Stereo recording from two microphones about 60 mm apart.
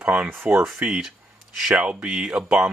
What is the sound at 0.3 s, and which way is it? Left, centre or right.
Speech, right.